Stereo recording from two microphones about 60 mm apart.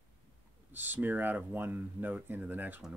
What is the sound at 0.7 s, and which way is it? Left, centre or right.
Speech, right.